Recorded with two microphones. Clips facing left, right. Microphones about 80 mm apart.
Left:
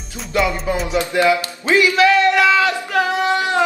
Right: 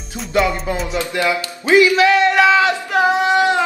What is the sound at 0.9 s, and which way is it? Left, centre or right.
Speech, left.